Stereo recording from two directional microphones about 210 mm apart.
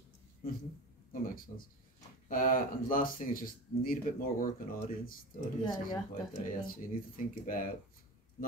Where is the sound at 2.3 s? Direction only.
40° left (ahead or behind).